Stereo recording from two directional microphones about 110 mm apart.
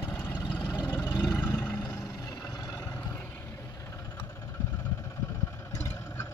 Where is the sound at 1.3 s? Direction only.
30° left (ahead or behind).